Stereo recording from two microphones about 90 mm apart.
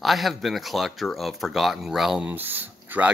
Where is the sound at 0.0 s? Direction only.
Centre (ahead or behind).